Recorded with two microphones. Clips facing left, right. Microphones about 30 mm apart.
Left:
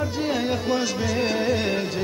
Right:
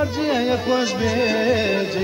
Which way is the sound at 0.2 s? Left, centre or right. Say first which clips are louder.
Right 3 dB; centre.